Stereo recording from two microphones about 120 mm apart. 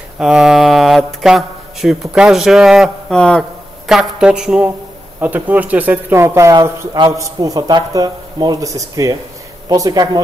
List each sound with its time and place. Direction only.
0.2 s a man's voice: 5° right (ahead or behind); by 10.2 s 35° right (ahead or behind)